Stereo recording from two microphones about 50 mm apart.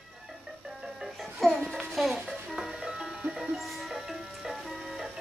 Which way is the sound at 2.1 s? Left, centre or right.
Centre.